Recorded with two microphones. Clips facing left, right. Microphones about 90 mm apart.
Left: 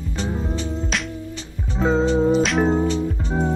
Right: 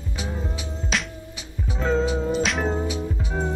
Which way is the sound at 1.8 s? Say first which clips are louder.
Left 4 dB; 20° left (ahead or behind).